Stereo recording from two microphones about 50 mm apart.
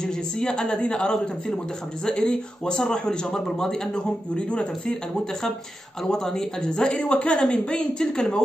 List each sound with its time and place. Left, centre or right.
0.0 s a woman's voice: centre
6.0 s speech: centre